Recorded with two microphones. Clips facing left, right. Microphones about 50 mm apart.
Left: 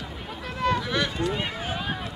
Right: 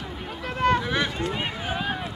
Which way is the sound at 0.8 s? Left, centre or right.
Right.